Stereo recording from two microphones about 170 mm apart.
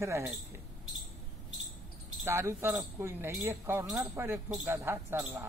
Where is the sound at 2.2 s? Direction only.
15° right (ahead or behind).